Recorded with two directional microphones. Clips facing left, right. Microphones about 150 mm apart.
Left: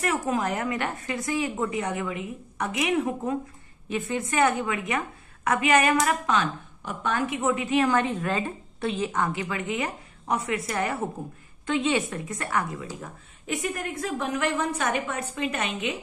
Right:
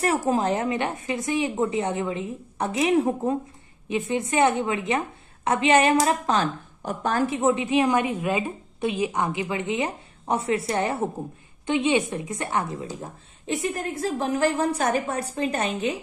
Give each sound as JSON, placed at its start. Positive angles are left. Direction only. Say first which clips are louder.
{"t": 0.0, "sound": "a woman's voice", "louder": "right 4 dB", "side_deg": -30}
{"t": 3.9, "sound": "a woman's voice", "louder": "right 3 dB", "side_deg": -20}